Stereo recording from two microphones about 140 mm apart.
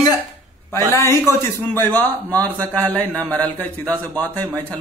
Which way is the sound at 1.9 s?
10° left (ahead or behind).